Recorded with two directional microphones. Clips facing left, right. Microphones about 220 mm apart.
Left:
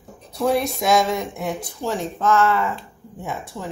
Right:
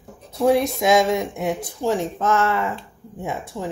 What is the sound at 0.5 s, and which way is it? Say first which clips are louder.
A woman's voice: right 1 dB; 20° right (ahead or behind).